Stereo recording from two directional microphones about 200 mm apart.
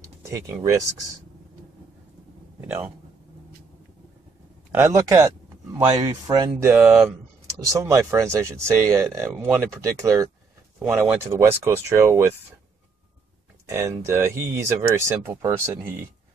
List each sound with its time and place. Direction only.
0.2 s speech: 15° right (ahead or behind)
2.6 s speech: 10° right (ahead or behind)
4.7 s speech: 15° right (ahead or behind)
6.9 s speech: centre (ahead or behind)
7.8 s speech: 15° right (ahead or behind)
13.7 s speech: 15° right (ahead or behind)